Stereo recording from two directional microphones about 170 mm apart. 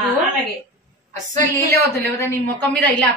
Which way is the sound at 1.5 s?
15° left (ahead or behind).